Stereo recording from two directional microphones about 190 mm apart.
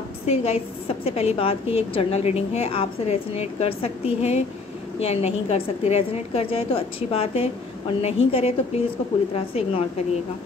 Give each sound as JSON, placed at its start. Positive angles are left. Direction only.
{"t": 0.3, "sound": "a woman's voice", "side_deg": 35}